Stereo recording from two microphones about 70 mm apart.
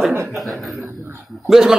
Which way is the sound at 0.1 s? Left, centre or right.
Right.